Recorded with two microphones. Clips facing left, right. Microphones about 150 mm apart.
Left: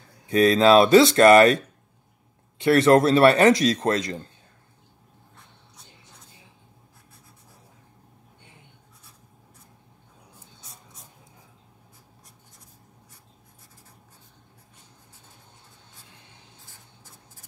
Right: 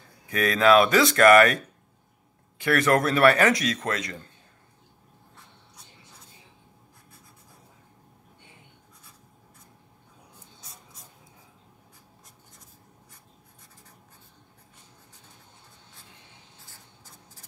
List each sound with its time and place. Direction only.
0.3 s speech: 30° left (ahead or behind)
2.6 s speech: 25° left (ahead or behind)